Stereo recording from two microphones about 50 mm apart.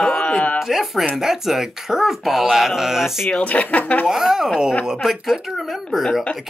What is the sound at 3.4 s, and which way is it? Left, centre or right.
Speech, left.